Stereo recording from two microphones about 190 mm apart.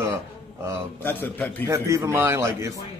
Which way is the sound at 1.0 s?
10° left (ahead or behind).